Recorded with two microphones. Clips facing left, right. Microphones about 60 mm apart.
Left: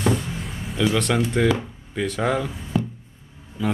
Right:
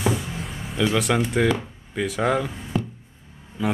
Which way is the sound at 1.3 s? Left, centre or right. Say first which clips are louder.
Left 1 dB; centre.